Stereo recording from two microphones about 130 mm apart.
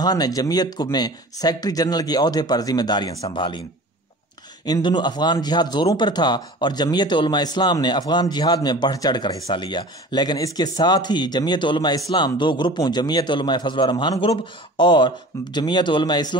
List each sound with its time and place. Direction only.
0.0 s speech: 30° left (ahead or behind)
4.6 s speech: 35° left (ahead or behind)